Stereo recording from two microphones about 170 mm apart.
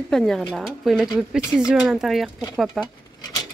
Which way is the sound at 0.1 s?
5° left (ahead or behind).